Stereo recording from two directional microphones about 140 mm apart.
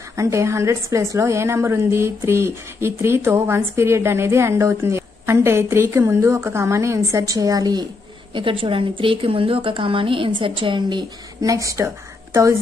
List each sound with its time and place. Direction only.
0.1 s a woman's voice: 20° right (ahead or behind)
8.4 s a woman's voice: 40° right (ahead or behind); by 11.9 s 20° right (ahead or behind)